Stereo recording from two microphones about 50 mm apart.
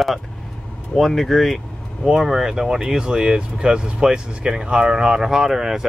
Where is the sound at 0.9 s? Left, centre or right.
Centre.